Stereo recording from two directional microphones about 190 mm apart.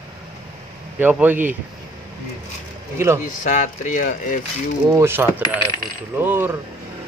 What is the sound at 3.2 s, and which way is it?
Speech, 40° left (ahead or behind).